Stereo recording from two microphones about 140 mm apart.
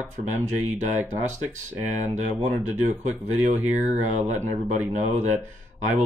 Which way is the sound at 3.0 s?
60° right (ahead or behind).